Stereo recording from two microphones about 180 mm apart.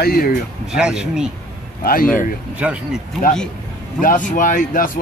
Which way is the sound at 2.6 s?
5° right (ahead or behind).